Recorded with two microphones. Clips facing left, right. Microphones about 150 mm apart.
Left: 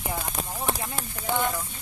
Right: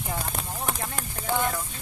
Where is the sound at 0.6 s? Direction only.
Centre (ahead or behind).